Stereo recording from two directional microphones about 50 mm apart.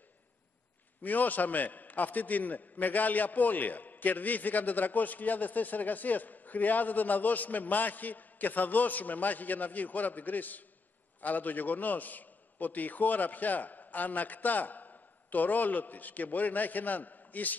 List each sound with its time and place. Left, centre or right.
1.0 s a man's voice: left